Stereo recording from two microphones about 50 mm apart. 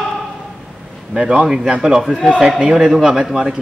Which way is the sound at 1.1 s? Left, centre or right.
Centre.